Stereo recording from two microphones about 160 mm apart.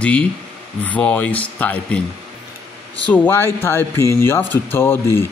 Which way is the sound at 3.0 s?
10° left (ahead or behind).